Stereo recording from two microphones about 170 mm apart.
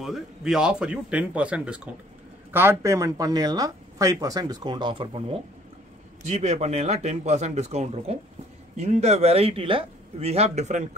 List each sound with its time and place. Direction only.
0.0 s speech: centre (ahead or behind); by 5.4 s 30° right (ahead or behind)
6.2 s a man's voice: 40° right (ahead or behind)